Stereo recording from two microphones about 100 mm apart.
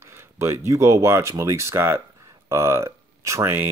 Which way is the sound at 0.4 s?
30° right (ahead or behind).